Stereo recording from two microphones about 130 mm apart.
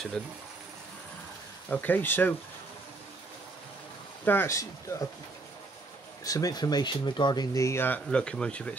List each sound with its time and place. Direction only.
1.7 s speech: 15° left (ahead or behind)
4.2 s speech: 15° left (ahead or behind)
6.2 s speech: 25° left (ahead or behind); by 8.7 s 10° left (ahead or behind)